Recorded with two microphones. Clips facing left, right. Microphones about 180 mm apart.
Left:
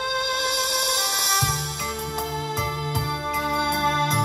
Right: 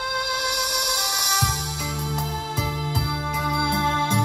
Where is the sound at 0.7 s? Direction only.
20° left (ahead or behind).